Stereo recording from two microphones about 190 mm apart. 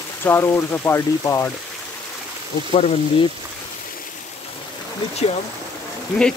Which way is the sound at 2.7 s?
30° left (ahead or behind).